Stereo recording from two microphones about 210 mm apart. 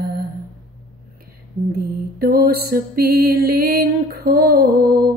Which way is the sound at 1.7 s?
45° right (ahead or behind).